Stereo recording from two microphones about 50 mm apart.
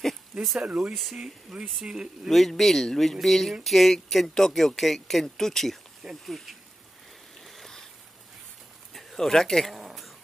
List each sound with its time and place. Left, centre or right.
0.6 s speech: right
2.2 s speech: centre
7.3 s rain: centre
8.9 s speech: centre
9.8 s zipper: centre